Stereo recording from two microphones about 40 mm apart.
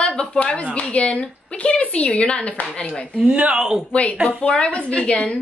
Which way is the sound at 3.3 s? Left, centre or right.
Right.